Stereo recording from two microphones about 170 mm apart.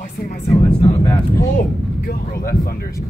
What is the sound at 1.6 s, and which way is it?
Speech, 60° left (ahead or behind).